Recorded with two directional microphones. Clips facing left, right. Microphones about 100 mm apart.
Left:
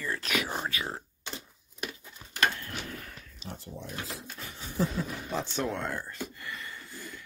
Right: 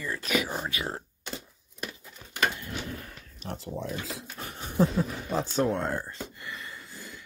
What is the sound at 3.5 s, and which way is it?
Speech, 90° right.